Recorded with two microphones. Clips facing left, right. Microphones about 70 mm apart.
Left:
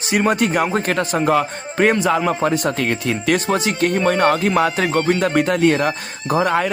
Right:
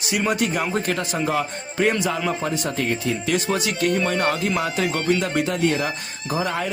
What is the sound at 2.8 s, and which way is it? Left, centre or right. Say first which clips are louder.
Speech: left 3 dB; left.